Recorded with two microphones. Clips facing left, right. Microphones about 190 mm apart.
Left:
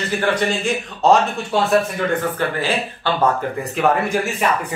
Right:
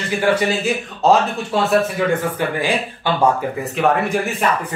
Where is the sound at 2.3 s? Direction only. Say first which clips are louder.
Right 1 dB; 15° right (ahead or behind).